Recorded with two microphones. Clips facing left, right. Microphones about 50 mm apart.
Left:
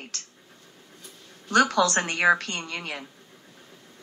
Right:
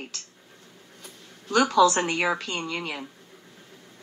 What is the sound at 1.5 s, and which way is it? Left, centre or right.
A woman's voice, left.